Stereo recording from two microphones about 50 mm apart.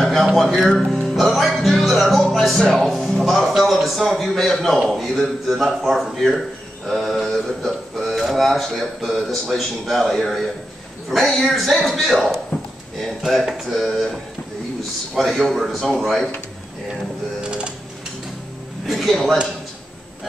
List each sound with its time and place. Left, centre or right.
0.0 s a sound: centre
0.4 s speech: centre
15.1 s speech: centre
17.4 s sewing machine: centre
18.9 s speech: centre